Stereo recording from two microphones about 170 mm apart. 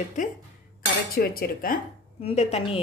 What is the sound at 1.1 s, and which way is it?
Speech, 60° left (ahead or behind).